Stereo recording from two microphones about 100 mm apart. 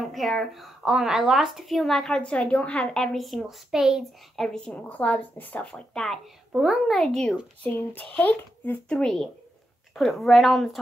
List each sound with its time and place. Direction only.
0.1 s a woman's voice: centre (ahead or behind)
4.5 s a woman's voice: 10° left (ahead or behind)
7.6 s a woman's voice: 15° left (ahead or behind)
8.9 s a woman's voice: 5° left (ahead or behind)